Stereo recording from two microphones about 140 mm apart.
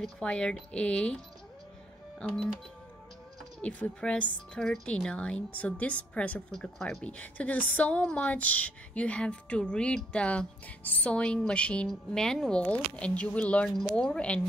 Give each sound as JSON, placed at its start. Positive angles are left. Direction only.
{"t": 0.0, "sound": "a woman's voice", "side_deg": 5}
{"t": 2.2, "sound": "speech", "side_deg": 5}
{"t": 3.6, "sound": "a woman's voice", "side_deg": 10}